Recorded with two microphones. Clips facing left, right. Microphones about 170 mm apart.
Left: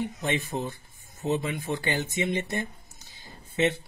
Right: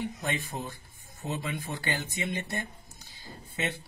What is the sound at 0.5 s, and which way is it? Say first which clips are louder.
Speech: left 6 dB; 20° left (ahead or behind).